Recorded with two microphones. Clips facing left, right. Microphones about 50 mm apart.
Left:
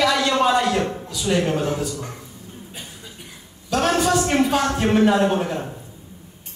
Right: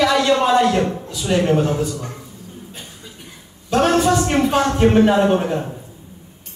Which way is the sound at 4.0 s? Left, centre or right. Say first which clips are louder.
Right 2 dB; centre.